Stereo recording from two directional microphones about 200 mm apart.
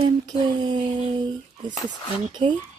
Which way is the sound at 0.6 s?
25° right (ahead or behind).